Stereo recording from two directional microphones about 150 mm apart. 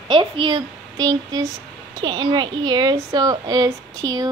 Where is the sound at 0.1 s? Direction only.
30° right (ahead or behind).